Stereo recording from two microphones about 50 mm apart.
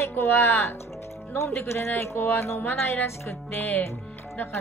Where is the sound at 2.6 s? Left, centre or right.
Left.